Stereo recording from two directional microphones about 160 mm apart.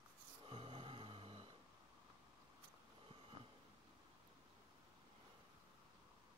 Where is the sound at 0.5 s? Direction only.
35° right (ahead or behind).